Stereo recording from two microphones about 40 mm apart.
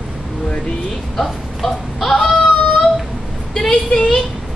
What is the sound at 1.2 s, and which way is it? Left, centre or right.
Speech, centre.